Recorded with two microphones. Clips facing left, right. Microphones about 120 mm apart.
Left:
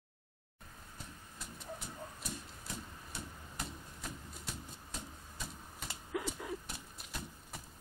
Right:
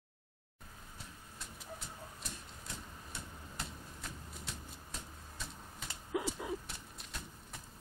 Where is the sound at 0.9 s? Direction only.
Centre (ahead or behind).